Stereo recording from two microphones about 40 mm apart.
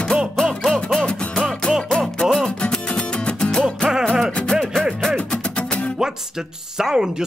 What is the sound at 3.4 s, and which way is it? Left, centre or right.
Music, left.